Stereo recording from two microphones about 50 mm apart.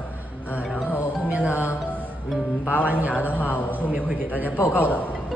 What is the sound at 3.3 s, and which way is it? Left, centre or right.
Speech, left.